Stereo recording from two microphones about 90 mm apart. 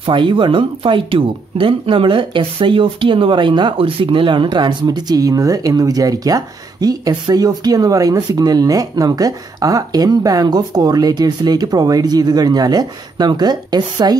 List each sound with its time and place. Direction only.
0.0 s speech: 65° right (ahead or behind); by 14.1 s 50° right (ahead or behind)